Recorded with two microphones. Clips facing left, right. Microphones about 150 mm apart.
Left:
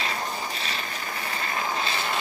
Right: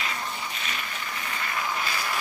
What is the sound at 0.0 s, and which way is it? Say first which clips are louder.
Vehicle: left 3 dB; 35° left (ahead or behind).